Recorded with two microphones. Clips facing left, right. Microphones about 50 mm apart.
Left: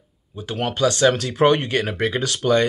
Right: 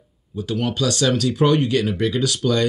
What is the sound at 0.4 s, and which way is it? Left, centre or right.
Speech, left.